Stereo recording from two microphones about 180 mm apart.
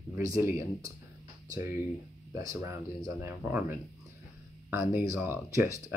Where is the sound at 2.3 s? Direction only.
20° right (ahead or behind).